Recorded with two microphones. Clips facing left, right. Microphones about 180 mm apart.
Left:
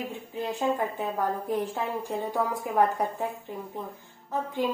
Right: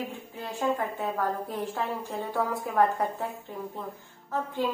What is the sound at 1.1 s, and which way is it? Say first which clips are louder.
A woman's voice: left 2 dB; 15° left (ahead or behind).